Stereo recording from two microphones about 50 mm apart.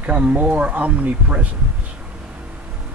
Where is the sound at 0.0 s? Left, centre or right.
Right.